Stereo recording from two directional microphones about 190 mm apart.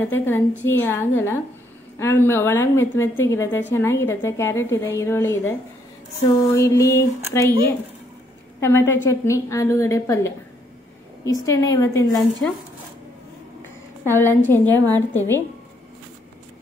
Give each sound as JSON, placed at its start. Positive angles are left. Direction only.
{"t": 0.0, "sound": "a woman's voice", "side_deg": 10}
{"t": 6.5, "sound": "a woman's voice", "side_deg": 15}
{"t": 7.4, "sound": "speech", "side_deg": -25}
{"t": 8.5, "sound": "a woman's voice", "side_deg": 15}
{"t": 11.2, "sound": "a woman's voice", "side_deg": 20}
{"t": 14.1, "sound": "a woman's voice", "side_deg": 10}